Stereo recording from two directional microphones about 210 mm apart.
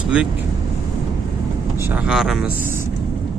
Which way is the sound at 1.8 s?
10° right (ahead or behind).